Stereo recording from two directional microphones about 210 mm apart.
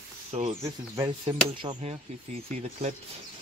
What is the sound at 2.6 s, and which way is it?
Speech, 35° right (ahead or behind).